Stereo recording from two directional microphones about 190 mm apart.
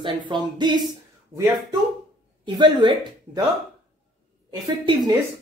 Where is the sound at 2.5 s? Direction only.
25° right (ahead or behind).